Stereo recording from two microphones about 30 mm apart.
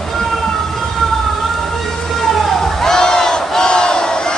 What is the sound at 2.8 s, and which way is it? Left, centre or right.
Crowd, centre.